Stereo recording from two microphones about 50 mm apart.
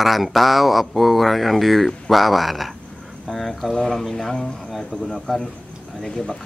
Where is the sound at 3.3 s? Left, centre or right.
Centre.